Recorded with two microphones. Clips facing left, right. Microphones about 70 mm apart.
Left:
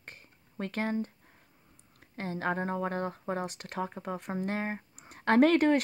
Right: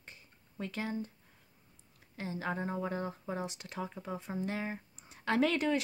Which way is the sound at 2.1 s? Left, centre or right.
Left.